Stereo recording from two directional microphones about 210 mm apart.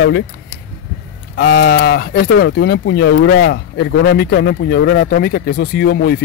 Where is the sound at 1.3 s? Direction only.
50° left (ahead or behind).